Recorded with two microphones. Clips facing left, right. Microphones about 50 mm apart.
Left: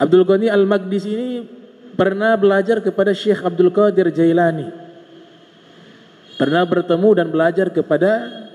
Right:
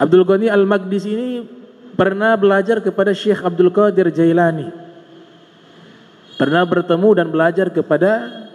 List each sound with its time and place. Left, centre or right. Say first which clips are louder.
0.0 s a man's voice: right 1 dB; right
6.3 s a man's voice: right 1 dB; right